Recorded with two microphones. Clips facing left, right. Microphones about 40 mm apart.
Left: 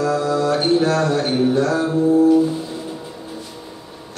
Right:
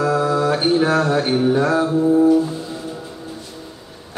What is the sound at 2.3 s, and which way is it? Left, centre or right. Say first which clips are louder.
Music: left 1 dB; centre.